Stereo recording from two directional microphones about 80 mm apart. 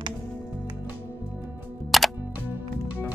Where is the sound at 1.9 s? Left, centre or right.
Centre.